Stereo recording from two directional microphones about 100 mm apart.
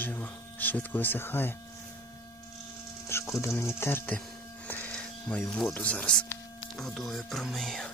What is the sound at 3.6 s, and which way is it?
Speech, 25° left (ahead or behind).